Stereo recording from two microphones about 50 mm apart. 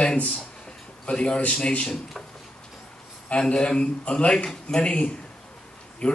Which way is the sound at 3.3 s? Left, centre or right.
Left.